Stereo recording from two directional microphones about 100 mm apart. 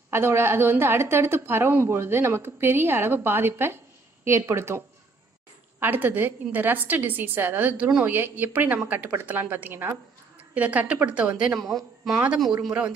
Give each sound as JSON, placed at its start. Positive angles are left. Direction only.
{"t": 0.1, "sound": "a woman's voice", "side_deg": -25}
{"t": 12.6, "sound": "speech", "side_deg": -10}